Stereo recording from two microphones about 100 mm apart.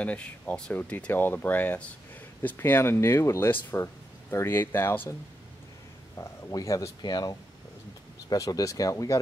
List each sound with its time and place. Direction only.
0.0 s speech: 15° left (ahead or behind)
6.1 s speech: 30° left (ahead or behind)
7.0 s speech: 45° left (ahead or behind)